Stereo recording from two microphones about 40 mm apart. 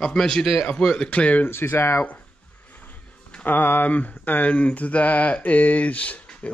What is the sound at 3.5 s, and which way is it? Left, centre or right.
Speech, left.